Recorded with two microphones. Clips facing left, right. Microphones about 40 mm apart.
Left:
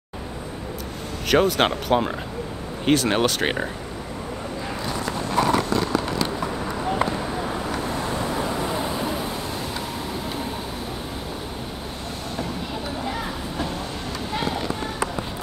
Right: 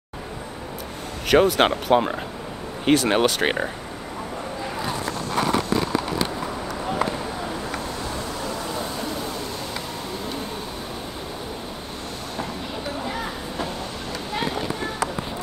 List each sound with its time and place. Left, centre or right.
1.3 s speech: centre
8.3 s vehicle: left